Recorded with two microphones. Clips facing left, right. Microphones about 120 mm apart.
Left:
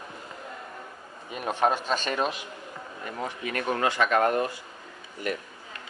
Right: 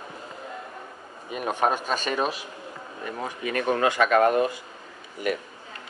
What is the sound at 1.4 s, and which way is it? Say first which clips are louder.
Speech: even; 15° right (ahead or behind).